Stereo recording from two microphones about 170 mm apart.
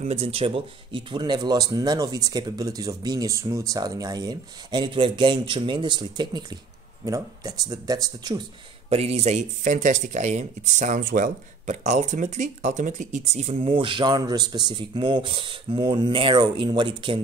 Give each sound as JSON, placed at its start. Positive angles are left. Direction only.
{"t": 0.0, "sound": "speech", "side_deg": -35}
{"t": 8.9, "sound": "speech", "side_deg": -35}